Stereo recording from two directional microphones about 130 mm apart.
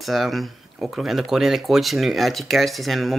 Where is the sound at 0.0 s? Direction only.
Centre (ahead or behind).